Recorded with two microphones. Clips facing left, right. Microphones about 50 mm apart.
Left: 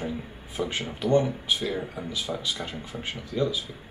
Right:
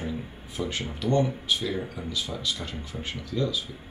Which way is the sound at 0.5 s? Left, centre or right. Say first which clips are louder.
Left 1 dB; centre.